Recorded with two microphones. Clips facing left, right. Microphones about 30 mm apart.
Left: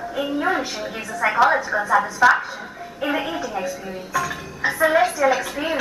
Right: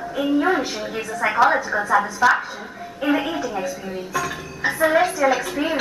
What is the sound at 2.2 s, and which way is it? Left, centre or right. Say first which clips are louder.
Speech: left 2 dB; left.